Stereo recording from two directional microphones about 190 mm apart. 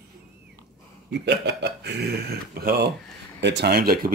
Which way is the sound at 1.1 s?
65° right (ahead or behind).